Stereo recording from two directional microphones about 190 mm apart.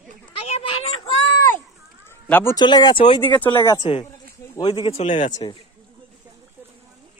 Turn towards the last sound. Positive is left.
turn(degrees=25)  # may be behind; listen again after turning